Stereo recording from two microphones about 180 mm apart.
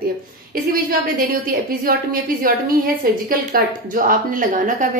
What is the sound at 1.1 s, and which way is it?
A woman's voice, 55° right (ahead or behind).